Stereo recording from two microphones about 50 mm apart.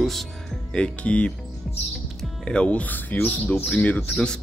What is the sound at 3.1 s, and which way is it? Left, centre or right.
Speech, left.